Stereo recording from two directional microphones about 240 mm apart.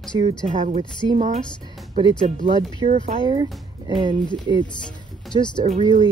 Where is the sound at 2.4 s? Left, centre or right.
Right.